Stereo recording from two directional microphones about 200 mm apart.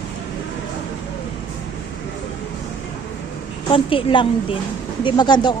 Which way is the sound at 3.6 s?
25° left (ahead or behind).